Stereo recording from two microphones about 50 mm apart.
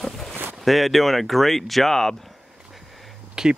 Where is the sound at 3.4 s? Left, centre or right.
Centre.